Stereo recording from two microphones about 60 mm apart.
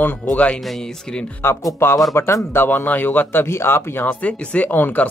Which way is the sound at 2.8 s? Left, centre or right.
Left.